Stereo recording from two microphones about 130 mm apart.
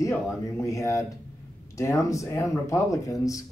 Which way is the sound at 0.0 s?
25° left (ahead or behind).